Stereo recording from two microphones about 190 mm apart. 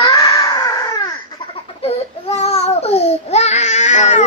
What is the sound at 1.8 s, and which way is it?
Babbling, 35° left (ahead or behind).